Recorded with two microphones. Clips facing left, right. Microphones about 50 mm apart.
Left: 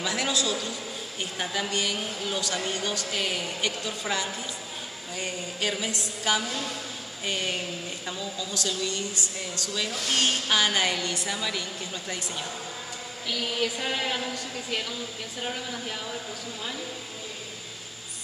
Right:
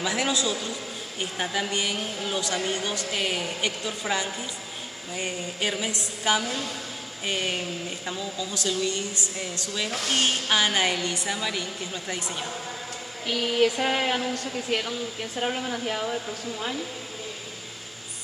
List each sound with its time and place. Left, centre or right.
0.0 s a woman's voice: centre
8.8 s speech: right
10.0 s a woman's voice: centre
13.3 s speech: right